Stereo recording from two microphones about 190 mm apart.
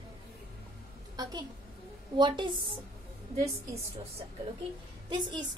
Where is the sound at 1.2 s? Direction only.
20° right (ahead or behind).